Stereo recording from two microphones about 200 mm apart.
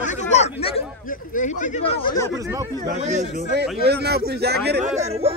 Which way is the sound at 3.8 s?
55° right (ahead or behind).